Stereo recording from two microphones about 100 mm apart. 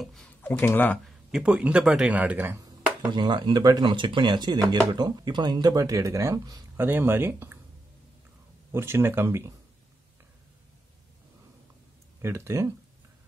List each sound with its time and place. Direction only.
0.0 s speech: 5° left (ahead or behind)
0.4 s speech: 20° left (ahead or behind)
1.4 s speech: 10° right (ahead or behind)
3.1 s speech: 50° right (ahead or behind); by 6.6 s 35° right (ahead or behind)
6.8 s speech: 20° right (ahead or behind)
8.7 s speech: 25° right (ahead or behind)
12.2 s speech: 25° right (ahead or behind)